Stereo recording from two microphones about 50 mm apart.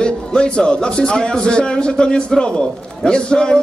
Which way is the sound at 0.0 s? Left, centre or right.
Centre.